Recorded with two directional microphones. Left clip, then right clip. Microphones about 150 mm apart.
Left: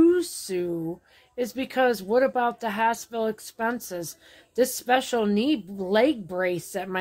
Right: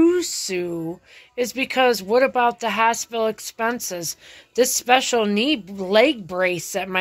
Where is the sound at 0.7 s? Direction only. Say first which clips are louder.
Right 2 dB; 25° right (ahead or behind).